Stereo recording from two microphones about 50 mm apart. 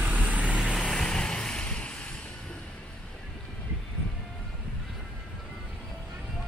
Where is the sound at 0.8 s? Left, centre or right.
Centre.